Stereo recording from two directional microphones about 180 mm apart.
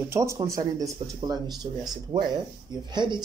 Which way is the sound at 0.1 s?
15° right (ahead or behind).